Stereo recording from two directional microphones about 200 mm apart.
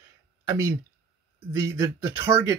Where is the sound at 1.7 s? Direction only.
10° right (ahead or behind).